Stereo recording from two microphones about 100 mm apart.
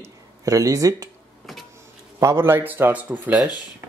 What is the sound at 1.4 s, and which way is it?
Power windows, centre (ahead or behind).